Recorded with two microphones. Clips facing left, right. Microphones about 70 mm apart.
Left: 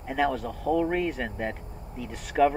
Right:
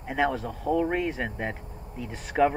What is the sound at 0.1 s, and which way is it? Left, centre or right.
Speech, right.